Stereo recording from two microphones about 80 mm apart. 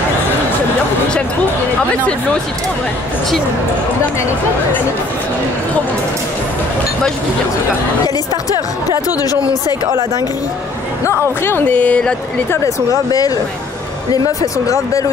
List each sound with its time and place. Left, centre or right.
11.1 s speech: left
14.1 s speech: left